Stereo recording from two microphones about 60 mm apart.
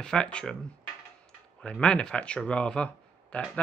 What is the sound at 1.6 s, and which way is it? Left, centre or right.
Speech, centre.